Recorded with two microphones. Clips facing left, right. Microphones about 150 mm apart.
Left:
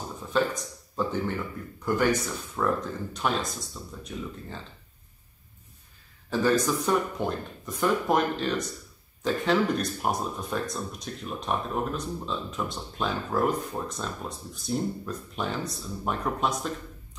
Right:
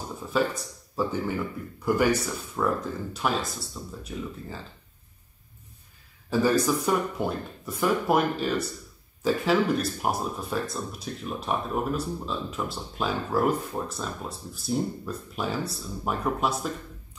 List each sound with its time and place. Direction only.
0.3 s speech: 5° right (ahead or behind)
6.3 s speech: 10° right (ahead or behind)